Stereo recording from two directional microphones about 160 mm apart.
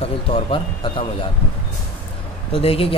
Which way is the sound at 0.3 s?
35° left (ahead or behind).